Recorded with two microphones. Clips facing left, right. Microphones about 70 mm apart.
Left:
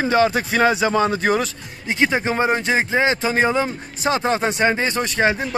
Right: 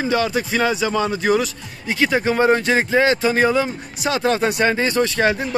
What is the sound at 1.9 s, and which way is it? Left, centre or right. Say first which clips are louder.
Speech: right 1 dB; left.